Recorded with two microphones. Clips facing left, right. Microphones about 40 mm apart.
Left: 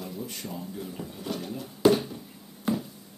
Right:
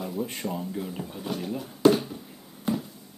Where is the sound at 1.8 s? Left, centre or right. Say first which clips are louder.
Right 1 dB; centre.